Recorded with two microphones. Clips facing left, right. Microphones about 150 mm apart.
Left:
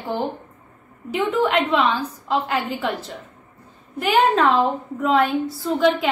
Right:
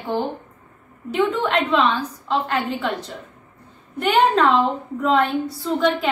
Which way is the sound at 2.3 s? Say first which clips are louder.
Even; 5° left (ahead or behind).